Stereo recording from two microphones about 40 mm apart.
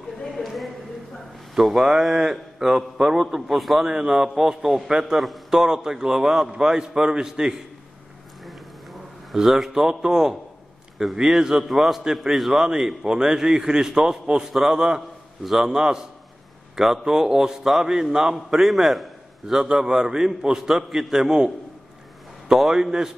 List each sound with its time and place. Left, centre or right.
0.4 s a sound: centre
1.5 s a man's voice: centre
3.8 s a man's voice: centre
5.1 s a man's voice: centre
5.6 s a man's voice: centre
9.3 s a man's voice: centre
11.6 s a man's voice: centre
15.0 s a sound: centre
15.6 s a man's voice: centre
22.5 s a man's voice: centre